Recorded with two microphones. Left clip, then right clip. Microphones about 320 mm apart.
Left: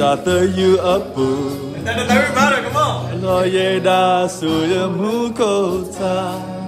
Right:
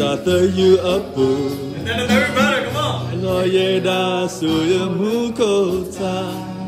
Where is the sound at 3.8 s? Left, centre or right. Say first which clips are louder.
Left 5 dB; centre.